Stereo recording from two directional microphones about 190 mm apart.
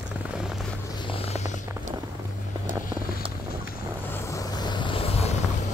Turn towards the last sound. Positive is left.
turn(degrees=30)  # may be behind; listen again after turning